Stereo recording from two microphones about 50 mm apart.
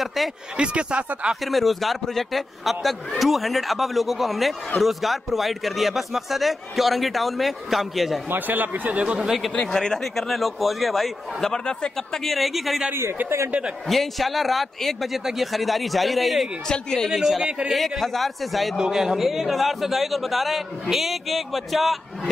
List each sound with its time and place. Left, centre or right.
0.0 s speech: centre
0.6 s speech: right
1.4 s a man's voice: centre
8.3 s speech: right
8.9 s speech: right
9.7 s a man's voice: centre
11.4 s speech: centre
12.3 s a man's voice: centre
13.8 s a man's voice: centre
16.6 s speech: centre
17.1 s a man's voice: centre
18.8 s a man's voice: centre